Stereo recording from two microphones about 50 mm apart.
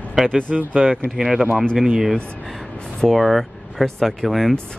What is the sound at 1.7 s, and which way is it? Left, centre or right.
Speech, centre.